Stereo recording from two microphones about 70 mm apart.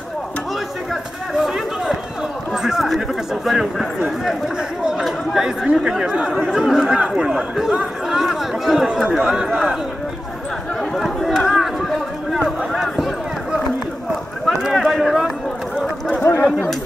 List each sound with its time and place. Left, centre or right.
1.3 s speech: centre
4.9 s speech: centre
7.7 s chatter: centre
9.1 s speech: centre
10.8 s a sound: centre
16.2 s a sound: left